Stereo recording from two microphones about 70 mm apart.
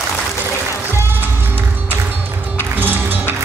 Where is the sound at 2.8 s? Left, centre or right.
Right.